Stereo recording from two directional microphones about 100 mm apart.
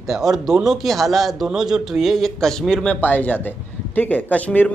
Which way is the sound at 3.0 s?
15° left (ahead or behind).